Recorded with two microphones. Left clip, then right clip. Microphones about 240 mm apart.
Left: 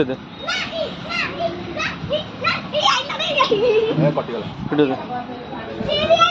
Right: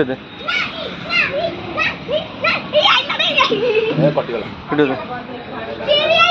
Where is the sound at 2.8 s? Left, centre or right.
Left.